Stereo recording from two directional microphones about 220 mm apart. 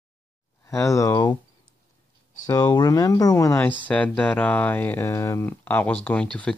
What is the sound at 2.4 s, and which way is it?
Speech, 20° left (ahead or behind).